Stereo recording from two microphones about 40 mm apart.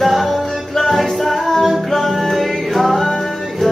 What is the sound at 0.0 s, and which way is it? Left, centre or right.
Music, centre.